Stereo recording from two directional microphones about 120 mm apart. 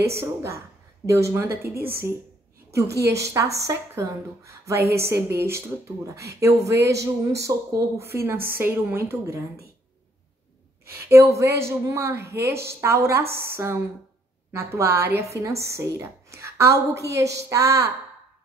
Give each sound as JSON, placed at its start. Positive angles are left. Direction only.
{"t": 0.0, "sound": "speech", "side_deg": -20}
{"t": 11.0, "sound": "speech", "side_deg": -25}